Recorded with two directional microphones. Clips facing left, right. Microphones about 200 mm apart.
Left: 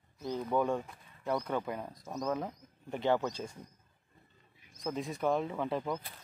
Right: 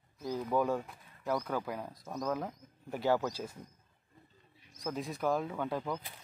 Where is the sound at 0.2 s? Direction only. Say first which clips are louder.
Even; 5° right (ahead or behind).